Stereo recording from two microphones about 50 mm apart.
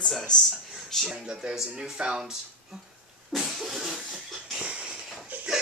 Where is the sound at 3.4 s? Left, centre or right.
Centre.